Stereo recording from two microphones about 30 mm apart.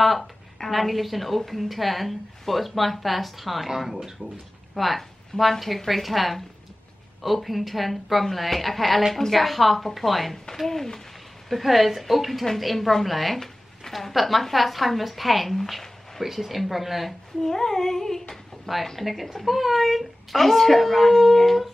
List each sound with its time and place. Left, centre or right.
0.7 s a woman's voice: centre
4.2 s speech: right
4.7 s a woman's voice: centre
10.5 s child singing: centre
11.4 s a woman's voice: centre
16.2 s a woman's voice: centre
17.4 s child singing: centre
18.3 s a sound: centre
18.9 s a woman's voice: centre